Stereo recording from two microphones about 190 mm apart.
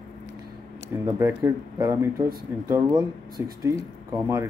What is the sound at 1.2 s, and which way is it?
Speech, 15° right (ahead or behind).